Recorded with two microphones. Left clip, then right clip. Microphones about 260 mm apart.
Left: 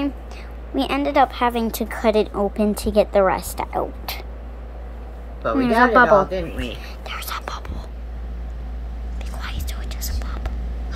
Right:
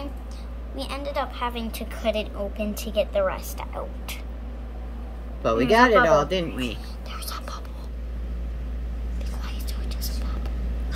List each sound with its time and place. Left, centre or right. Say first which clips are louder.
0.7 s a woman's voice: left 11 dB; centre
5.4 s speech: left 1 dB; right
7.1 s whispering: left 7 dB; centre
9.4 s whispering: left 8 dB; centre